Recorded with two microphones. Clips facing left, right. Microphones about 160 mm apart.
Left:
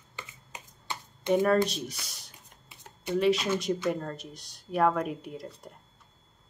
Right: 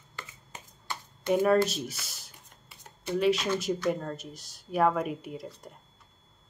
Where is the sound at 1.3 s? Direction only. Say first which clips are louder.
Even; centre (ahead or behind).